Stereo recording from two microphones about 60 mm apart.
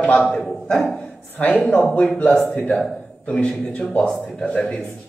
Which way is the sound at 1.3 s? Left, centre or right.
Left.